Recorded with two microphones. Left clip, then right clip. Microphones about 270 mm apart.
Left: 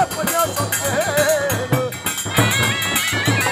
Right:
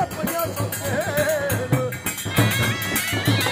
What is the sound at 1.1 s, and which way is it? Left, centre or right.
Music, centre.